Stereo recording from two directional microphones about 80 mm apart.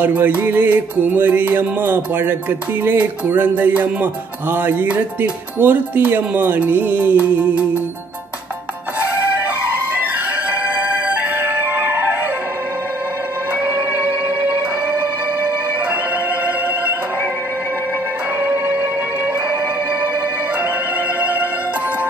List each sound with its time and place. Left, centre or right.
0.0 s music: right
10.8 s music: centre
13.9 s music: centre
21.2 s music: right